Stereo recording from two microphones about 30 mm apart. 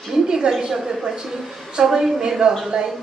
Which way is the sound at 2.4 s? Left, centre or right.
Right.